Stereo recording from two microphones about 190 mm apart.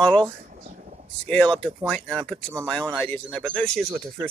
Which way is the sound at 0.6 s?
40° right (ahead or behind).